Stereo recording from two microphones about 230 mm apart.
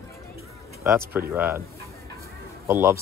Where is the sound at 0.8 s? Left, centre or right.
Centre.